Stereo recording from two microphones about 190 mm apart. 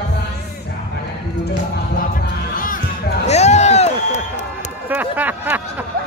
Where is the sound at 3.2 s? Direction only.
35° left (ahead or behind).